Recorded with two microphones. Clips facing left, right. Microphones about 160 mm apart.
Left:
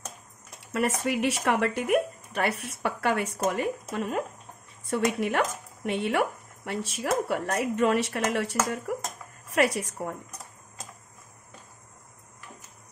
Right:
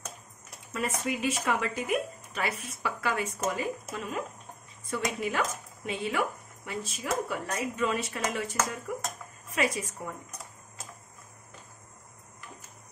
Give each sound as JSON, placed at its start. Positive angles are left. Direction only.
{"t": 0.7, "sound": "speech", "side_deg": 65}